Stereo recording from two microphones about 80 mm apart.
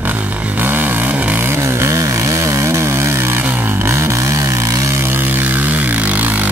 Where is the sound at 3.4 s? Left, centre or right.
Right.